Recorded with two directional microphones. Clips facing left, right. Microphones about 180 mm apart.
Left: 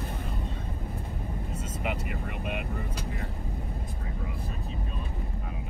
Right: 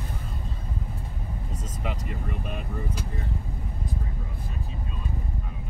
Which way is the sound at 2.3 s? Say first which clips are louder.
Left 1 dB; 35° right (ahead or behind).